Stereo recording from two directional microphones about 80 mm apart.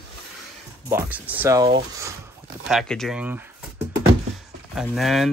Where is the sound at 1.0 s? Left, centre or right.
Right.